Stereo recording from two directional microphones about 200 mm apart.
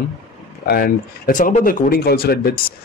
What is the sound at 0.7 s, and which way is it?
Speech, 50° left (ahead or behind).